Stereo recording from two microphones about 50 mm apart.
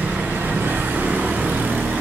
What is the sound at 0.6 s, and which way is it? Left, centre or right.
Vehicle, right.